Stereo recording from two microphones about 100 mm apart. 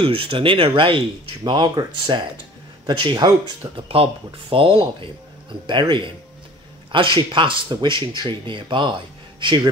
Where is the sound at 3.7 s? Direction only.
65° right (ahead or behind).